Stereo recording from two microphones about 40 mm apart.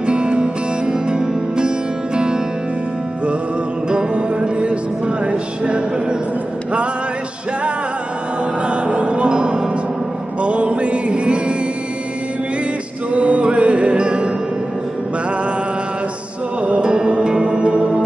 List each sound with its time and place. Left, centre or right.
0.0 s music: right
3.9 s music: right
8.6 s music: right
13.1 s music: right
16.6 s music: right